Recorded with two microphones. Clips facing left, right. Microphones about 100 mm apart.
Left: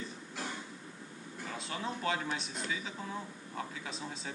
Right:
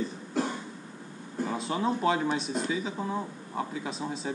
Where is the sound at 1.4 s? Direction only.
25° right (ahead or behind).